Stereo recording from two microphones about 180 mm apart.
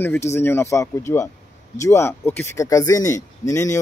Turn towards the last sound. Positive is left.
turn(degrees=15)  # may be behind; listen again after turning